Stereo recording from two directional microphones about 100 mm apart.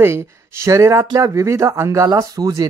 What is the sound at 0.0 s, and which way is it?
Speech, 25° right (ahead or behind).